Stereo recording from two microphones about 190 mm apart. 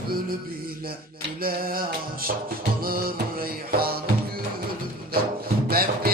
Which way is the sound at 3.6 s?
50° right (ahead or behind).